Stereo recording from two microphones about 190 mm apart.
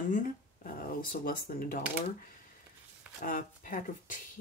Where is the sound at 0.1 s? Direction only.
45° left (ahead or behind).